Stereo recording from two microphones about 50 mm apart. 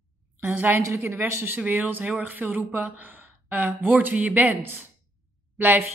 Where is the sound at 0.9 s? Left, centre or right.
Right.